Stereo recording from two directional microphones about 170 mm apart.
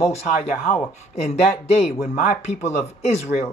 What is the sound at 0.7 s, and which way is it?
Speech, 35° left (ahead or behind).